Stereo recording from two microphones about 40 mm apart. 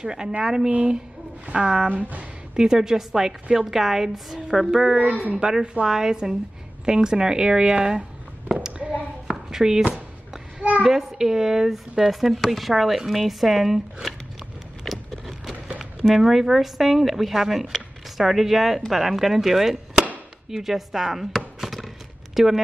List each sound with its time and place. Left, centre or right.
0.0 s speech: centre
0.7 s a woman's voice: right
1.9 s speech: right
2.5 s speech: centre
4.9 s speech: right
5.4 s speech: right
9.5 s speech: centre
14.9 s a sound: centre
16.2 s speech: centre
21.5 s a sound: centre